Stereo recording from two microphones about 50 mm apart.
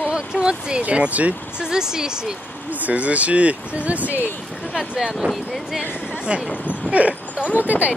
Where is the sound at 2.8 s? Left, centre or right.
Right.